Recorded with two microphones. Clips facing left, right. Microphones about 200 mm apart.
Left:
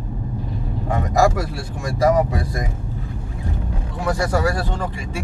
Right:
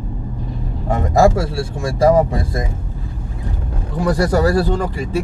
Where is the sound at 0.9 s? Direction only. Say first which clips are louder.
Right 4 dB; 30° right (ahead or behind).